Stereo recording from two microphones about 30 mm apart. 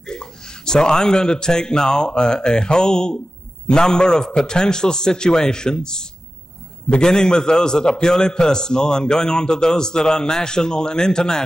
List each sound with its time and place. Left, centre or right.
0.0 s a man's voice: left